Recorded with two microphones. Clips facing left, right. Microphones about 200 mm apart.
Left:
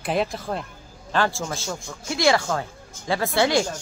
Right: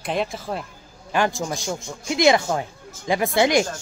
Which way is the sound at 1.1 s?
15° right (ahead or behind).